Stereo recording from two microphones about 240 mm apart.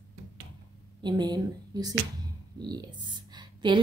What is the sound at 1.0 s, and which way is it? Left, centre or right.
A woman's voice, centre.